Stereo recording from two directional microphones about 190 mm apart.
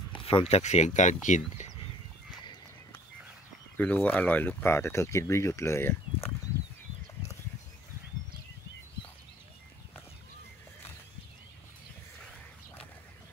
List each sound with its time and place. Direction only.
0.1 s speech: 30° left (ahead or behind)
3.7 s speech: 10° left (ahead or behind)